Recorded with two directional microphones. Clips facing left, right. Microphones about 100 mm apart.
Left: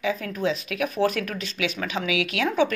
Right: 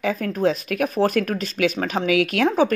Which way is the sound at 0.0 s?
45° right (ahead or behind).